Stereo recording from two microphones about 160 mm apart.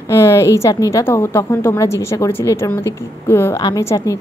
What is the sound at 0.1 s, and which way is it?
A woman's voice, 20° left (ahead or behind).